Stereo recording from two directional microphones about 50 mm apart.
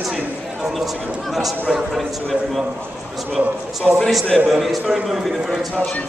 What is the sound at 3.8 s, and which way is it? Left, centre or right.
Speech, centre.